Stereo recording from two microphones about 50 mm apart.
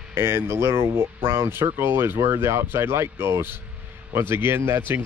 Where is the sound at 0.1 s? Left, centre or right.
Right.